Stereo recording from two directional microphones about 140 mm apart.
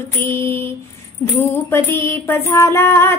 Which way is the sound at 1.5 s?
20° left (ahead or behind).